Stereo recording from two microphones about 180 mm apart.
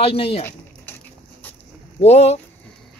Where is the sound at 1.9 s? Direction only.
35° left (ahead or behind).